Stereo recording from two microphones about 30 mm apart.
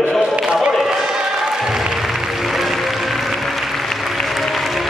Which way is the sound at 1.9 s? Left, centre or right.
Centre.